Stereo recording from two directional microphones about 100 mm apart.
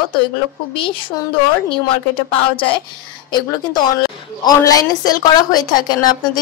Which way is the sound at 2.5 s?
60° left (ahead or behind).